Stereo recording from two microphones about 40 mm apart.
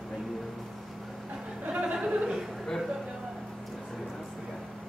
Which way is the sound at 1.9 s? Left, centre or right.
Centre.